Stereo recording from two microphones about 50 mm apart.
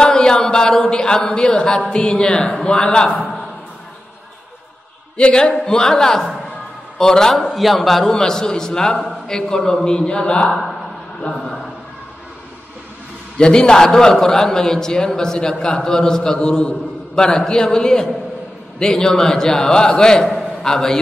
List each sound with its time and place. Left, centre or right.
0.0 s a sound: centre
1.9 s a man's voice: centre
5.1 s a man's voice: centre
7.3 s a man's voice: centre
8.1 s a man's voice: centre
10.5 s a man's voice: centre
13.4 s a man's voice: centre